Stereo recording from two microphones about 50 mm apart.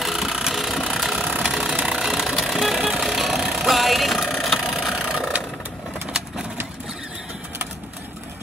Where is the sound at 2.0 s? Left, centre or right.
Centre.